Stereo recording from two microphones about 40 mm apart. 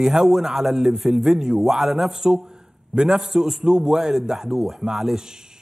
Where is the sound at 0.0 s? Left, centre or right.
Centre.